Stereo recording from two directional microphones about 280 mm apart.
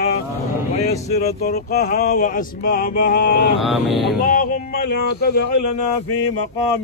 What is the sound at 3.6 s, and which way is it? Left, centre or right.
Vehicle, centre.